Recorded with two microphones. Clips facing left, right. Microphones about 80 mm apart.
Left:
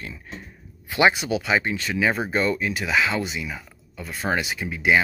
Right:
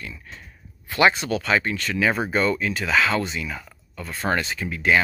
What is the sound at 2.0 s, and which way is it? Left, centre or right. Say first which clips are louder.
Speech: right 1 dB; centre.